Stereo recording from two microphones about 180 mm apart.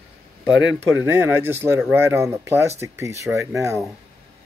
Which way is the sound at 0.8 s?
10° right (ahead or behind).